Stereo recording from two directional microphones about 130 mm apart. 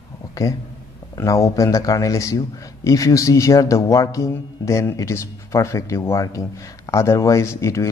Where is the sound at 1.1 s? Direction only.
25° left (ahead or behind).